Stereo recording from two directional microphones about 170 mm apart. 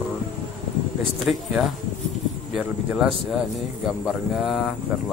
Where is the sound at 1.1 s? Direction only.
Centre (ahead or behind).